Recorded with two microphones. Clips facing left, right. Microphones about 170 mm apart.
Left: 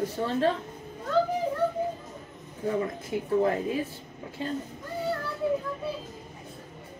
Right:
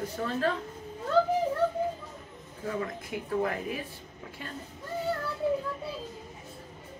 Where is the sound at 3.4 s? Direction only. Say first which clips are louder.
Left 5 dB; 30° left (ahead or behind).